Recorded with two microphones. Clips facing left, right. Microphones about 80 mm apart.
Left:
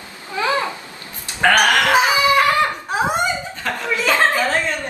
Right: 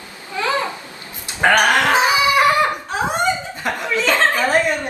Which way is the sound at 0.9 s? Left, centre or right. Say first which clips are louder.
Right 1 dB; right.